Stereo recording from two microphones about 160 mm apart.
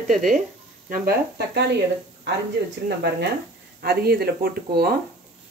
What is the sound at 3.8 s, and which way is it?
Speech, 80° right.